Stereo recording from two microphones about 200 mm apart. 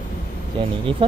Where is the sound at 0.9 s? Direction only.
25° right (ahead or behind).